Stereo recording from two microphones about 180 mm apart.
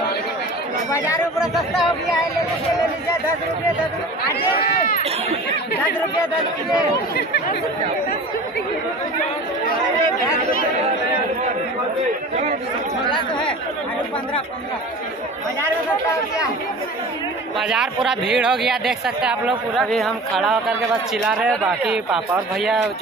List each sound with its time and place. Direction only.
1.4 s speech: centre (ahead or behind)
4.2 s speech: 55° left (ahead or behind)
7.2 s speech: 65° left (ahead or behind)
17.6 s speech: centre (ahead or behind)